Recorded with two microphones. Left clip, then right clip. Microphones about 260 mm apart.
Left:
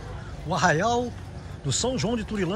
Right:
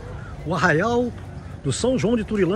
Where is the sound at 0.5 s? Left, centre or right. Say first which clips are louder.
Right 2 dB; centre.